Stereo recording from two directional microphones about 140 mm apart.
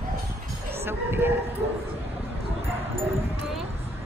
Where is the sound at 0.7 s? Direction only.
15° right (ahead or behind).